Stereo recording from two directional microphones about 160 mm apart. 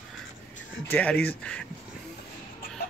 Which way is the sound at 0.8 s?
10° left (ahead or behind).